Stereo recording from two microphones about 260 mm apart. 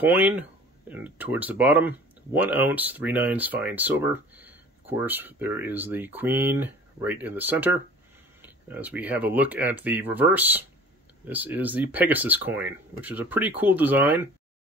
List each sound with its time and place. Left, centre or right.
0.0 s speech: centre